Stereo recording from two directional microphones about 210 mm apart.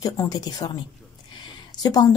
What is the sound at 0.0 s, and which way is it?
A woman's voice, 20° left (ahead or behind).